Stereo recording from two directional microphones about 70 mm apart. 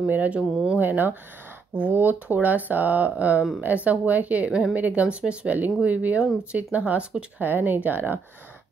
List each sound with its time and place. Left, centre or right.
0.0 s speech: right
7.4 s speech: right